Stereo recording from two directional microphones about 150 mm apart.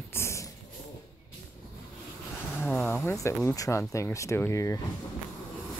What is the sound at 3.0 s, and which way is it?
Speech, 20° left (ahead or behind).